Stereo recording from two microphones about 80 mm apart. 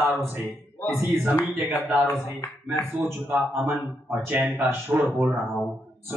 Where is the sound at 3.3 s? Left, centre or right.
Right.